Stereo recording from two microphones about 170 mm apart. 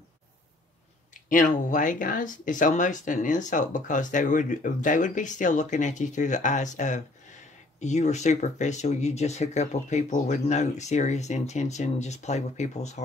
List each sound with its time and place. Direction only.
1.3 s speech: 50° left (ahead or behind)